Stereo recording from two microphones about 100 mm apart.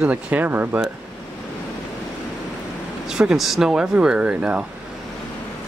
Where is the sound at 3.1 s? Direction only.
5° right (ahead or behind).